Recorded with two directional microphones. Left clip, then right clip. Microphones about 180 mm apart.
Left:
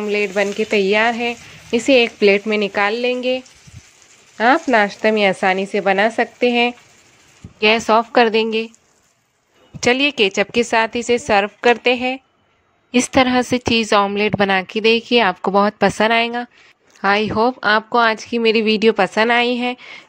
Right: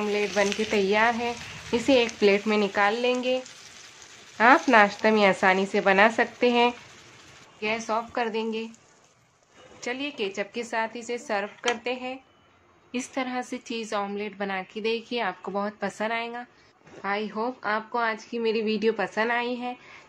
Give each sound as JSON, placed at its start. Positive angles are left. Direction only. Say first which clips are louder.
{"t": 0.1, "sound": "speech", "louder": "left 8 dB", "side_deg": 35}
{"t": 7.6, "sound": "speech", "louder": "left 14 dB", "side_deg": 50}
{"t": 9.8, "sound": "a woman's voice", "louder": "left 16 dB", "side_deg": 55}